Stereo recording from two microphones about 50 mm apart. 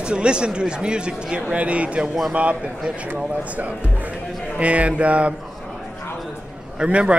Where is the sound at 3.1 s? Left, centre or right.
Right.